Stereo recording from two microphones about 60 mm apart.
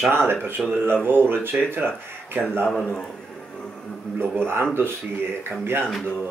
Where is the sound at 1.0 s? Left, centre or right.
Right.